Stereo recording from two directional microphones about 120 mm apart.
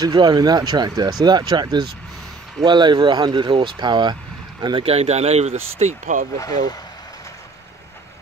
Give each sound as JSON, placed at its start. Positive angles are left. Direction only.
{"t": 0.0, "sound": "speech", "side_deg": -35}
{"t": 4.8, "sound": "speech", "side_deg": -60}